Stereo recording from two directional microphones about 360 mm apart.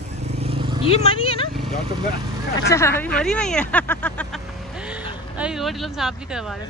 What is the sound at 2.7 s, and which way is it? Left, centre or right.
Speech, centre.